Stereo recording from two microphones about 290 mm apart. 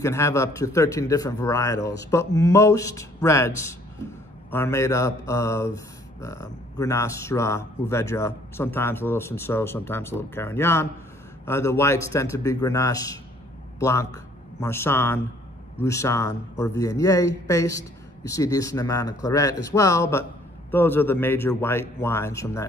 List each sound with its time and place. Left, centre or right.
0.0 s speech: centre